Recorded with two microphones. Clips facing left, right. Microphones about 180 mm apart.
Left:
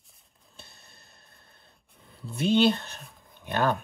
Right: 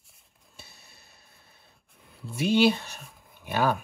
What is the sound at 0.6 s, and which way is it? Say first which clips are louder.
Speech: even; 5° right (ahead or behind).